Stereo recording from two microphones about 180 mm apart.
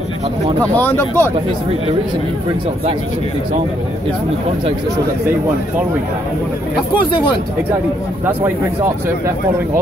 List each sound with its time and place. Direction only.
0.6 s speech: 10° left (ahead or behind)